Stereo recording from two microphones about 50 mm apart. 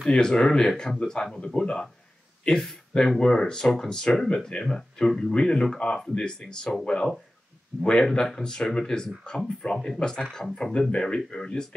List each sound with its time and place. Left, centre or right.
0.1 s speech: centre